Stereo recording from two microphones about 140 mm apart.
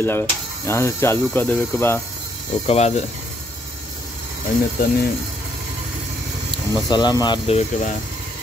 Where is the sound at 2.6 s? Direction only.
50° left (ahead or behind).